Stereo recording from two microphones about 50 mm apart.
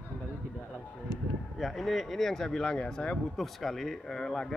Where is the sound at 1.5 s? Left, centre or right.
Centre.